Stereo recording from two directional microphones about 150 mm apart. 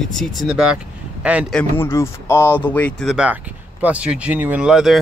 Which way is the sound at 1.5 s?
10° left (ahead or behind).